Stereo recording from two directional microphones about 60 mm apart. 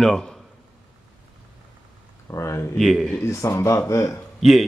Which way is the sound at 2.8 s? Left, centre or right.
Centre.